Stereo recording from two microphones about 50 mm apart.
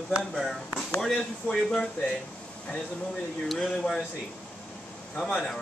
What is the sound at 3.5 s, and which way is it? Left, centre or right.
Speech, centre.